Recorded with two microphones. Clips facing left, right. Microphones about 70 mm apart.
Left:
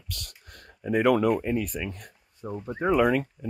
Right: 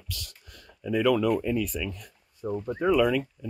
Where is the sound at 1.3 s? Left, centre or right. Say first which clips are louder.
Even; left.